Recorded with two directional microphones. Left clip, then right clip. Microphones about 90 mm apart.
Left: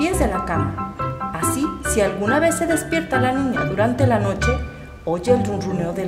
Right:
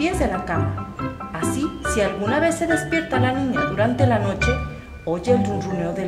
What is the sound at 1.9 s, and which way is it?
Speech, 30° left (ahead or behind).